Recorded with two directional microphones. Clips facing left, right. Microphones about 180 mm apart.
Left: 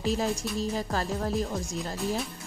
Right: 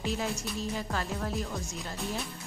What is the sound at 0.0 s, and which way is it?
A woman's voice, 35° left (ahead or behind).